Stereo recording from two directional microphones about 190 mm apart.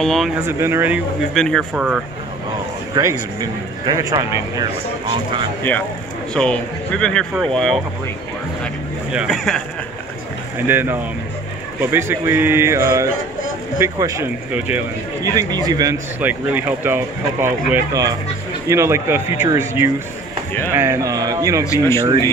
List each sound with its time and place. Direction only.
0.0 s speech: centre (ahead or behind)
0.5 s speech: 10° right (ahead or behind)
2.9 s speech: 20° right (ahead or behind)
5.6 s speech: 10° left (ahead or behind)
9.1 s speech: centre (ahead or behind)
10.7 s speech: 10° right (ahead or behind)
21.6 s speech: 15° left (ahead or behind)